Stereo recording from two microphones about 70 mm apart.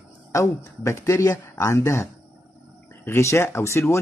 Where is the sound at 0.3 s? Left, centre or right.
Left.